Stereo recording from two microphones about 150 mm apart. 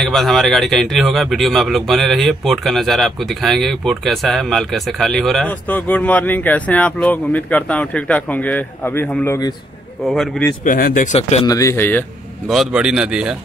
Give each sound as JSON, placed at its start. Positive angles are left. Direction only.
{"t": 0.0, "sound": "a man's voice", "side_deg": 0}
{"t": 10.6, "sound": "speech", "side_deg": 65}
{"t": 11.1, "sound": "speech", "side_deg": 45}
{"t": 11.4, "sound": "speech", "side_deg": 20}
{"t": 12.4, "sound": "a man's voice", "side_deg": -5}